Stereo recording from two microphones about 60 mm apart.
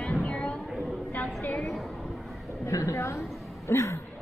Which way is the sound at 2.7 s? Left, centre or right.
Left.